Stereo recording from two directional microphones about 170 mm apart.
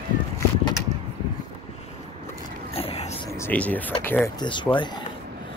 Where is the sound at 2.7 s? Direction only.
35° left (ahead or behind).